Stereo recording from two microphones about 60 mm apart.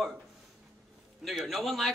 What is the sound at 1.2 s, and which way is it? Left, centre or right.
Speech, centre.